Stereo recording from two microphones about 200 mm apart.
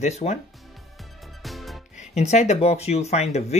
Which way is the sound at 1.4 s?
Centre (ahead or behind).